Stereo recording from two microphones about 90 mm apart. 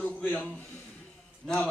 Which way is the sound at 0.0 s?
15° left (ahead or behind).